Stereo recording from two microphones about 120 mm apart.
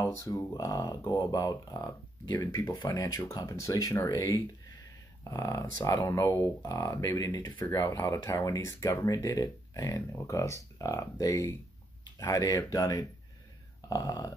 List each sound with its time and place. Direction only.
0.0 s speech: 25° left (ahead or behind)
0.7 s speech: 30° left (ahead or behind)